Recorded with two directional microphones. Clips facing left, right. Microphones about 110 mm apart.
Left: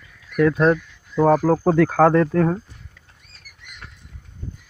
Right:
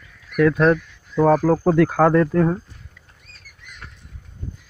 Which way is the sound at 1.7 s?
45° left (ahead or behind).